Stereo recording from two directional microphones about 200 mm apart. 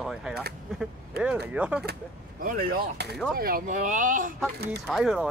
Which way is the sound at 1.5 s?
5° right (ahead or behind).